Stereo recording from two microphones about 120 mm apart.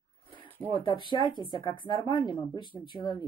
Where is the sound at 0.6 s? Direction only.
40° left (ahead or behind).